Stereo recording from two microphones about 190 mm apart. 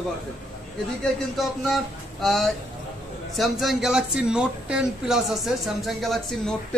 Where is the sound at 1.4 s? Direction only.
Centre (ahead or behind).